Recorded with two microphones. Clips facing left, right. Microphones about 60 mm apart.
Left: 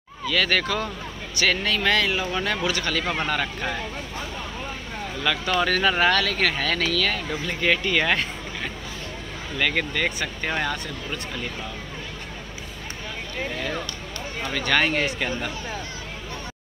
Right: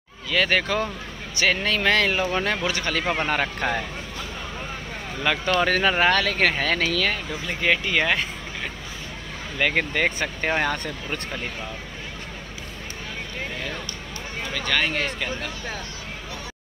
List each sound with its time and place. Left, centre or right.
0.3 s speech: right
5.2 s speech: right
7.6 s speech: centre
9.6 s speech: right
14.5 s speech: centre